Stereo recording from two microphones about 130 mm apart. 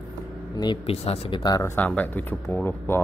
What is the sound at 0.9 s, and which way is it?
Speech, 45° left (ahead or behind).